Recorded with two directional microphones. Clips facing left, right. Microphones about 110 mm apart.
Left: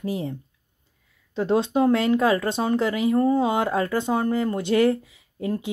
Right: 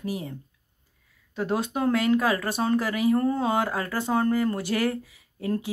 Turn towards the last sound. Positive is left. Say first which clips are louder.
# left 1 dB
turn(degrees=20)  # may be behind; listen again after turning